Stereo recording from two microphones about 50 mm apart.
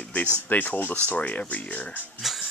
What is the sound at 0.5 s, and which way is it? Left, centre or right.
Speech, left.